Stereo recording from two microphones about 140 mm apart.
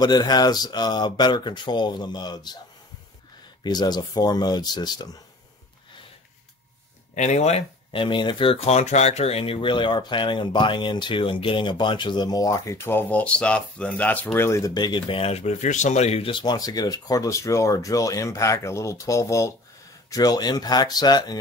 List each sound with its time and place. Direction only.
0.0 s speech: 30° left (ahead or behind)
3.6 s speech: 30° left (ahead or behind)
7.2 s speech: 55° left (ahead or behind); by 21.4 s 30° left (ahead or behind)